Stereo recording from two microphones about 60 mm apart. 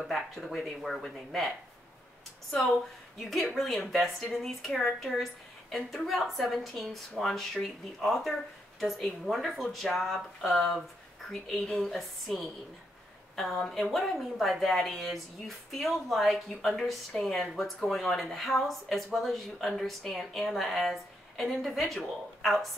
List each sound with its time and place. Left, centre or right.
0.0 s a woman's voice: centre
3.2 s a woman's voice: centre